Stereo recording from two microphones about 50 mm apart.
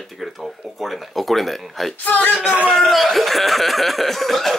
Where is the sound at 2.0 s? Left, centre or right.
Left.